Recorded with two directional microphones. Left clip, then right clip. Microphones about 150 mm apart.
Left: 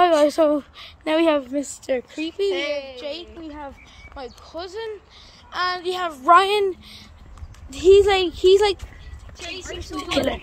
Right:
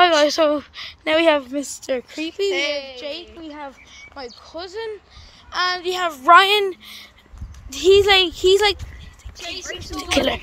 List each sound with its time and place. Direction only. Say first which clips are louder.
0.0 s a sound: right 1 dB; 5° left (ahead or behind)
1.5 s speech: even; 35° right (ahead or behind)
6.3 s speech: right 3 dB; 5° right (ahead or behind)
9.9 s speech: right 3 dB; centre (ahead or behind)